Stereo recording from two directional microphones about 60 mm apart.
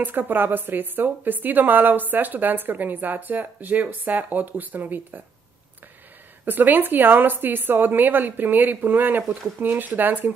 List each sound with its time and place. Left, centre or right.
0.0 s speech: right
6.4 s speech: right